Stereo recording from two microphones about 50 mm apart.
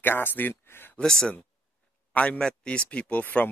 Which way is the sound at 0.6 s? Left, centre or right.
Left.